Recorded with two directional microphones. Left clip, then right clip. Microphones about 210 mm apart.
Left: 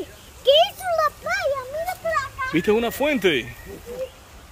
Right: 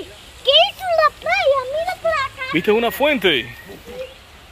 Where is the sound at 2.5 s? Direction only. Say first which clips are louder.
Right 4 dB; 10° left (ahead or behind).